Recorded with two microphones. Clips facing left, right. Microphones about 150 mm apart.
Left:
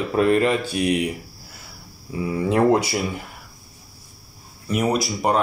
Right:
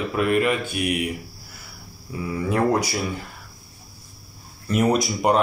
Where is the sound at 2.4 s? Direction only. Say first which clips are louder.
Left 3 dB; 25° left (ahead or behind).